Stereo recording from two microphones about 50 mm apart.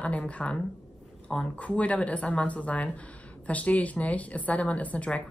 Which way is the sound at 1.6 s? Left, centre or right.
Left.